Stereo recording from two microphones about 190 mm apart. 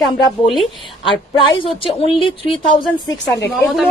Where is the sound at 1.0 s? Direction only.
25° left (ahead or behind).